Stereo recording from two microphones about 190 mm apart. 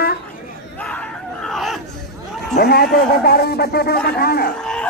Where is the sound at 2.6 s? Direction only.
55° left (ahead or behind).